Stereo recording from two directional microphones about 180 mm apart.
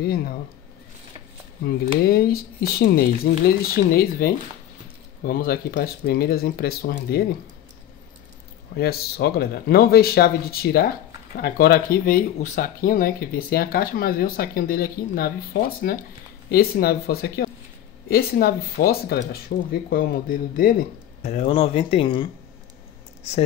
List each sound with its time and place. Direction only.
0.0 s speech: 60° left (ahead or behind)
2.0 s speech: 60° left (ahead or behind)
8.7 s speech: 60° left (ahead or behind)
21.3 s speech: 30° left (ahead or behind)